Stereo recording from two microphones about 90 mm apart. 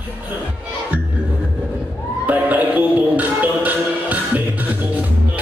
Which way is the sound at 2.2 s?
20° right (ahead or behind).